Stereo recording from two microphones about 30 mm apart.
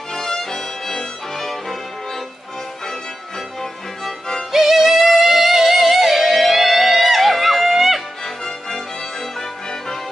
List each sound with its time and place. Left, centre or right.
0.1 s music: centre
4.5 s music: centre
8.5 s music: centre